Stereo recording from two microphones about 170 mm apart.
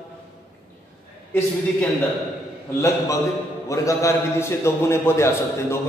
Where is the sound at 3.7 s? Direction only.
20° left (ahead or behind).